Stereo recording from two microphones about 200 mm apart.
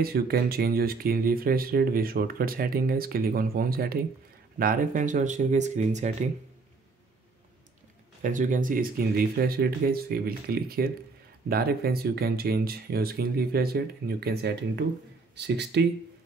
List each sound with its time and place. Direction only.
0.0 s speech: 50° right (ahead or behind)
8.2 s speech: 40° right (ahead or behind); by 15.8 s 55° right (ahead or behind)